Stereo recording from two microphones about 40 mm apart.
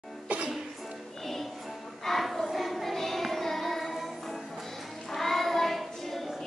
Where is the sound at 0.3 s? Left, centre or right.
Right.